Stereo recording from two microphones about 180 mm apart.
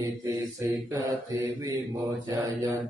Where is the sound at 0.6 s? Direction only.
15° right (ahead or behind).